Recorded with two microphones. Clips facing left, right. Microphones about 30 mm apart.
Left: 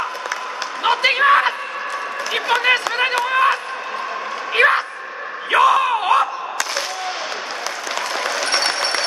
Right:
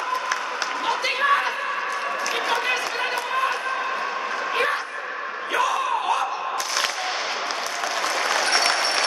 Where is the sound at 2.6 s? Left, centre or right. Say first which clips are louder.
Left 7 dB; left.